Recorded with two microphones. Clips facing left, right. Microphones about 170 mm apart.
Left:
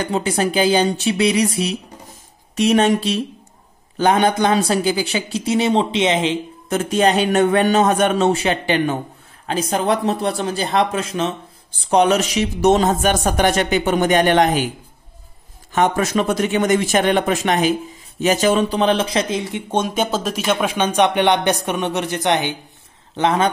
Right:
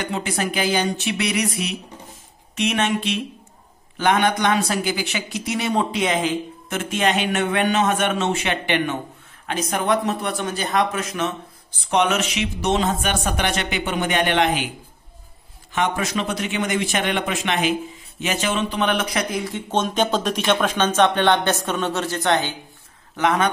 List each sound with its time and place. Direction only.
0.0 s speech: 35° left (ahead or behind)
15.7 s speech: 45° left (ahead or behind); by 19.6 s 25° left (ahead or behind)
19.7 s speech: 10° left (ahead or behind)
23.1 s speech: 30° left (ahead or behind)